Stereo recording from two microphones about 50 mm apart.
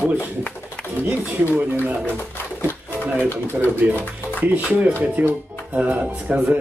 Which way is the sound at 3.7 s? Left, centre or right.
Right.